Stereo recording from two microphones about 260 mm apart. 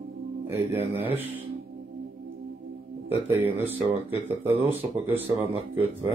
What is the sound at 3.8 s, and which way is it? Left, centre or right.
Speech, centre.